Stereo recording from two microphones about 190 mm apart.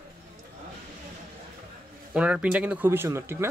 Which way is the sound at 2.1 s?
5° right (ahead or behind).